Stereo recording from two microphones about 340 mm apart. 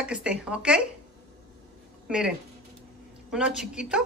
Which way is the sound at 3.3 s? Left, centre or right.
Centre.